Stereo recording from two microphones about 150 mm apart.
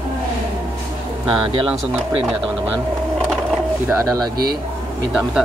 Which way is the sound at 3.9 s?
20° right (ahead or behind).